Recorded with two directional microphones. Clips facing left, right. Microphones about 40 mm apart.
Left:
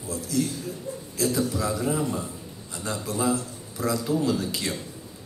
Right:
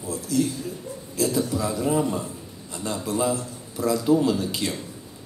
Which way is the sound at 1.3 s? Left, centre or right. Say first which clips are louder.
Right 1 dB; right.